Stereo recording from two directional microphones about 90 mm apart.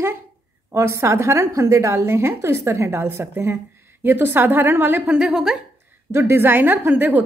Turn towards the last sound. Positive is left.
turn(degrees=-20)  # may be behind; listen again after turning